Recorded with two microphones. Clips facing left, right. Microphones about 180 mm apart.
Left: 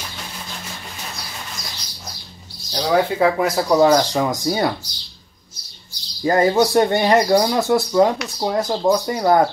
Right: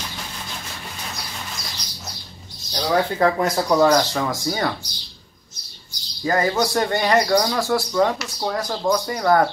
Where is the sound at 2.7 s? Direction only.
5° left (ahead or behind).